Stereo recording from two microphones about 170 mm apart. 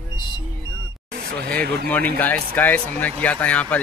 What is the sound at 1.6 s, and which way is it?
Speech, 65° right (ahead or behind).